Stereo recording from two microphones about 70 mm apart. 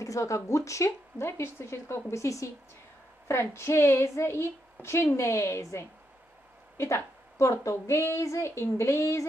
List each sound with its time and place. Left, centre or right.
0.0 s a woman's voice: left